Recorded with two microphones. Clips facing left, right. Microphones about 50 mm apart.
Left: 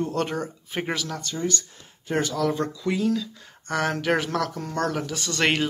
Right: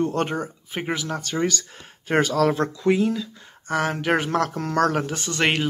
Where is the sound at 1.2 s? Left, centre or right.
Right.